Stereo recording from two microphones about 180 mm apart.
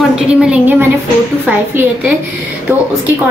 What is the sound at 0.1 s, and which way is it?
A woman's voice, 5° right (ahead or behind).